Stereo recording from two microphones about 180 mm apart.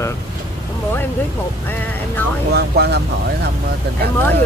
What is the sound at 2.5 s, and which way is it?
Speech, 65° right (ahead or behind).